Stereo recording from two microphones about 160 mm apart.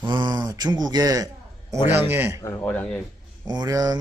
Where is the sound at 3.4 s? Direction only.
25° right (ahead or behind).